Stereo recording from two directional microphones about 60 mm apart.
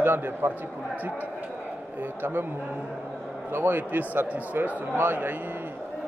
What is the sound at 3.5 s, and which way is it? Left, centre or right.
Speech, right.